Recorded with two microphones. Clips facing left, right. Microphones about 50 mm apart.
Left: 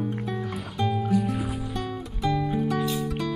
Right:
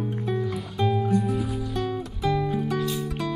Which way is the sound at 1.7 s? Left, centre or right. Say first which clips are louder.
Right 3 dB; centre.